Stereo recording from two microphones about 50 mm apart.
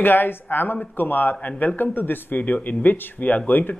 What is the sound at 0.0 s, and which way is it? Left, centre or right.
Speech, left.